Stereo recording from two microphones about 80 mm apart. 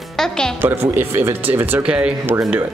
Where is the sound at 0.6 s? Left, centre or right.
Right.